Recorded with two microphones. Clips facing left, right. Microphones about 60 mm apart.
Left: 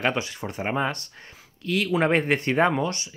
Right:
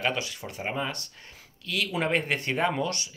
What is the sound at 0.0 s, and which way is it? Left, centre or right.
Speech, left.